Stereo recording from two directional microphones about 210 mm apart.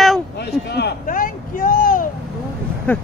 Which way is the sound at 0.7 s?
45° left (ahead or behind).